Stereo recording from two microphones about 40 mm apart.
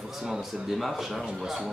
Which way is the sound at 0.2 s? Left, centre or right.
Centre.